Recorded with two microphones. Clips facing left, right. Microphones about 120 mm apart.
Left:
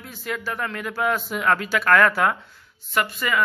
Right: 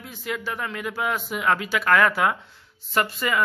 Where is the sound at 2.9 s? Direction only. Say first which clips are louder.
Even; 25° right (ahead or behind).